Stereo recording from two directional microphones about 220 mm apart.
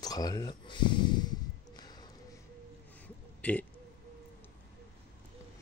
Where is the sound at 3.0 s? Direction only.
5° left (ahead or behind).